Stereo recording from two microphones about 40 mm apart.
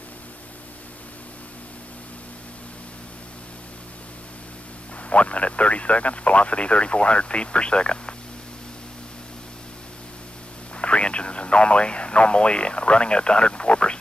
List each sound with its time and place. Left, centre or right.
5.1 s speech: left
10.8 s speech: left